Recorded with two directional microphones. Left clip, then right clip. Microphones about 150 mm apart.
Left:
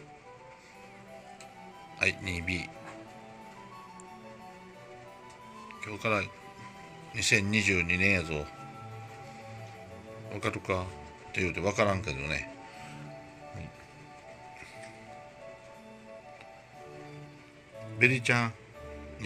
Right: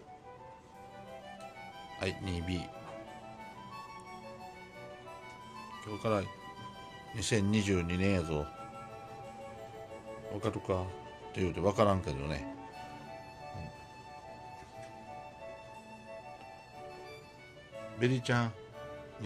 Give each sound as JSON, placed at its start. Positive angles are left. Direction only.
{"t": 2.0, "sound": "speech", "side_deg": -15}
{"t": 5.8, "sound": "speech", "side_deg": -10}
{"t": 10.3, "sound": "speech", "side_deg": -10}
{"t": 11.3, "sound": "speech", "side_deg": -20}
{"t": 17.9, "sound": "speech", "side_deg": 0}